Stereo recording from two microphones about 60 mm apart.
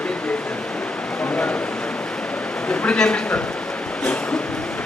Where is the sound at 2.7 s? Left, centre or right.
Centre.